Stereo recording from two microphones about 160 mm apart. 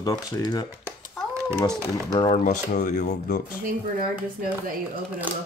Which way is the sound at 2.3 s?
50° left (ahead or behind).